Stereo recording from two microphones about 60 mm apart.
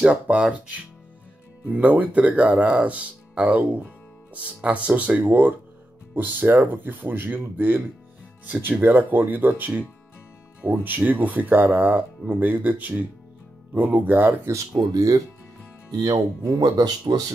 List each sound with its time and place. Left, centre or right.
0.0 s speech: right
14.4 s speech: right